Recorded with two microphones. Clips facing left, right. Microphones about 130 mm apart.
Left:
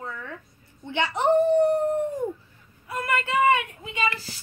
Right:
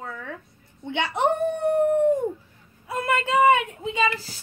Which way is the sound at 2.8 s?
25° right (ahead or behind).